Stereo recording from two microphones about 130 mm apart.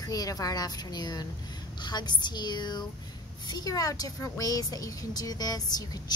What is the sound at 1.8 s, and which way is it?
A woman's voice, 35° left (ahead or behind).